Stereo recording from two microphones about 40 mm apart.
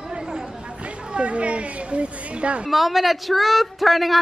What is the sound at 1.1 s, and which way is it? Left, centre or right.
Speech, right.